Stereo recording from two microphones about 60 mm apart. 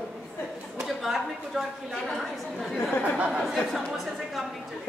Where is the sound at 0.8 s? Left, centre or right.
Centre.